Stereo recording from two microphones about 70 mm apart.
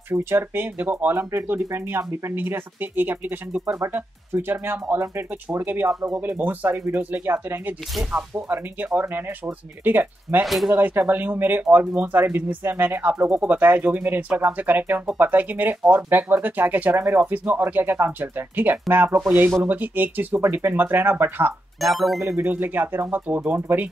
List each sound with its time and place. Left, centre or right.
0.1 s speech: right
10.4 s speech: centre
10.8 s speech: right
21.8 s speech: centre
22.4 s speech: right